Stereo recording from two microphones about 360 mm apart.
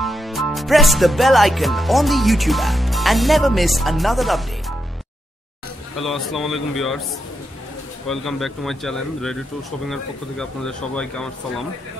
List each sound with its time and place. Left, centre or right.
0.0 s music: centre
5.9 s speech: centre
8.1 s speech: centre